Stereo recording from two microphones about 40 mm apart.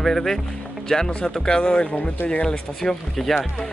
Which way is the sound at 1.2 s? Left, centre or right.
Left.